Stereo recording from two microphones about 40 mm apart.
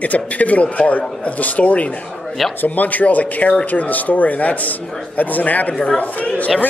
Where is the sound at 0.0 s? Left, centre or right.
Left.